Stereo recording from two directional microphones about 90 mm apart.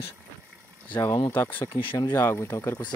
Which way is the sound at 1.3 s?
25° left (ahead or behind).